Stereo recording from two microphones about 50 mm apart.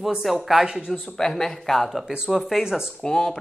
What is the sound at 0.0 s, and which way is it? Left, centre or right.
Speech, centre.